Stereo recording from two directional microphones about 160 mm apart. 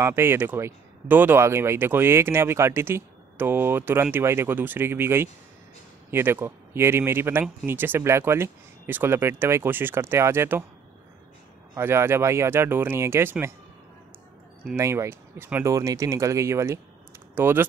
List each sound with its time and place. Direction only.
0.0 s speech: 15° right (ahead or behind)
11.7 s speech: 15° right (ahead or behind)
14.8 s speech: 15° right (ahead or behind)